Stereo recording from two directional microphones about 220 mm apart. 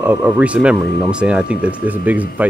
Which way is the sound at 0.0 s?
10° right (ahead or behind).